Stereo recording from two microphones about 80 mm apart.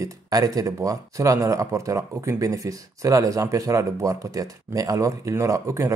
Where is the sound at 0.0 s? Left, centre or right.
Right.